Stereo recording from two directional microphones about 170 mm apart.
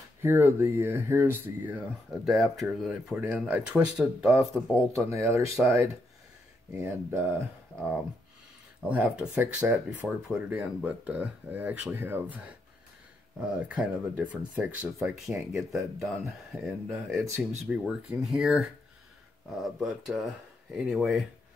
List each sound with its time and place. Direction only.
0.2 s speech: 15° right (ahead or behind)
2.2 s speech: centre (ahead or behind)
5.1 s speech: 15° right (ahead or behind)
8.8 s speech: 10° right (ahead or behind)